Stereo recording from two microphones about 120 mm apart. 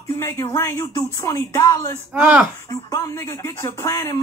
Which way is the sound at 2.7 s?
25° left (ahead or behind).